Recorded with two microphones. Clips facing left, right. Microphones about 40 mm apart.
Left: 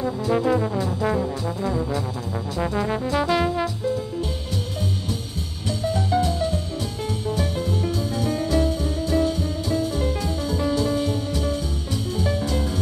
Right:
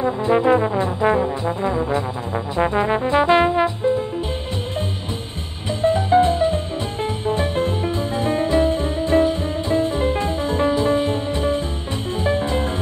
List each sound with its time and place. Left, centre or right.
0.0 s brass instrument: right
5.7 s music: right